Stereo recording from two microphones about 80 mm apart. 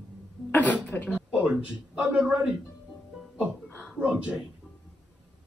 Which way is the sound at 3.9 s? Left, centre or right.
Centre.